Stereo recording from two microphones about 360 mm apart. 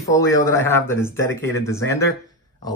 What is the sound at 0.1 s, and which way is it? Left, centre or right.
Speech, centre.